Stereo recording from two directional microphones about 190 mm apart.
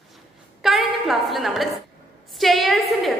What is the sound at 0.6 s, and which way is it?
A woman's voice, centre (ahead or behind).